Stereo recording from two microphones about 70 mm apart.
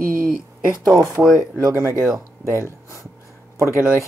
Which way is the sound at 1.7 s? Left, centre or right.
Right.